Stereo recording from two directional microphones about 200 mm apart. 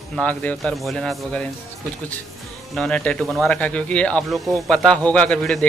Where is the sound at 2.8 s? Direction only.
5° left (ahead or behind).